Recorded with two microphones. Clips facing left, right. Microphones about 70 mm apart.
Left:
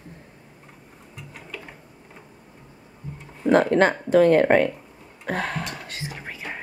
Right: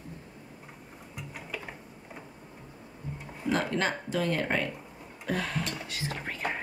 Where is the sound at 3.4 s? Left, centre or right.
Left.